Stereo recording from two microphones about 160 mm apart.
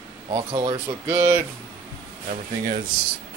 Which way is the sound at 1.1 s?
15° right (ahead or behind).